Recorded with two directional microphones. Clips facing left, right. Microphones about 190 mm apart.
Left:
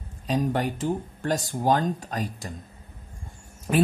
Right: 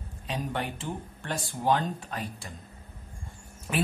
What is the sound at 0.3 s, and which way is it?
Speech, 40° left (ahead or behind).